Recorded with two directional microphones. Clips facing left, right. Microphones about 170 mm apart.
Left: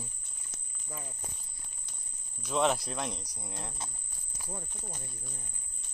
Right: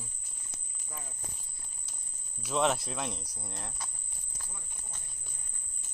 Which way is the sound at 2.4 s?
Centre (ahead or behind).